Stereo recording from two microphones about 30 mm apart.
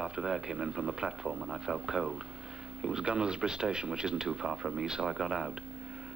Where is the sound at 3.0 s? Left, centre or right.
Right.